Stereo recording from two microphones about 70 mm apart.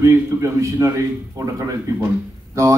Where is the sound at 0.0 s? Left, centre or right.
Right.